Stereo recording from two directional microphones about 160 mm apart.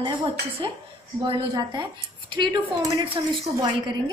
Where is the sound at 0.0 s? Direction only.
30° right (ahead or behind).